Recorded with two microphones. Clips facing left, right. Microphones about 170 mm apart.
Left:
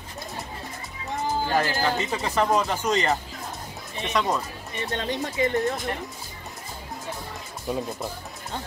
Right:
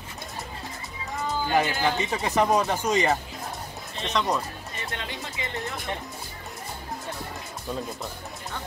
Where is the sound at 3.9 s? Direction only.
15° left (ahead or behind).